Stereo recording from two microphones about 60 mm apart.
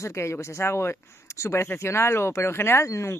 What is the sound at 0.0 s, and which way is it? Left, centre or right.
Speech, left.